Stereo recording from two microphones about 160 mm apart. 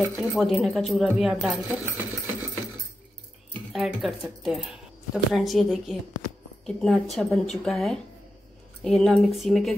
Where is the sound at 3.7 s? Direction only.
Centre (ahead or behind).